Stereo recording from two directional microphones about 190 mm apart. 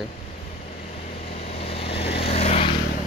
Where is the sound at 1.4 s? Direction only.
30° left (ahead or behind).